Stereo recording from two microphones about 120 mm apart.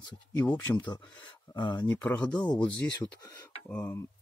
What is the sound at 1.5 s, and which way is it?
Speech, 35° left (ahead or behind).